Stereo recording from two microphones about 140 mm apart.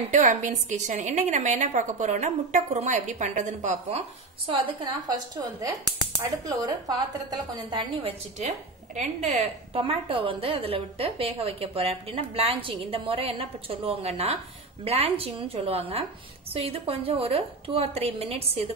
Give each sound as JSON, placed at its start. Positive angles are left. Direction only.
{"t": 0.1, "sound": "a woman's voice", "side_deg": -65}
{"t": 5.0, "sound": "a woman's voice", "side_deg": -25}
{"t": 7.7, "sound": "a woman's voice", "side_deg": -50}